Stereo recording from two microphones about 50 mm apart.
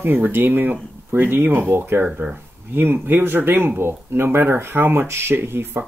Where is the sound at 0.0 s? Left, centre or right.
Right.